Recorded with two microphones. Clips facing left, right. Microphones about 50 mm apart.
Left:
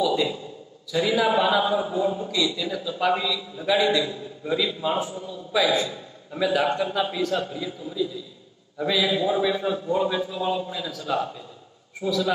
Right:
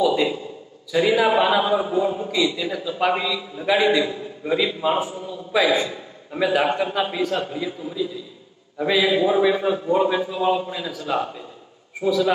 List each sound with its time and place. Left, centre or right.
0.0 s a man's voice: right